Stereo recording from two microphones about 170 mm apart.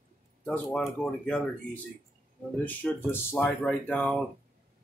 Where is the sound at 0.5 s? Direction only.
5° left (ahead or behind).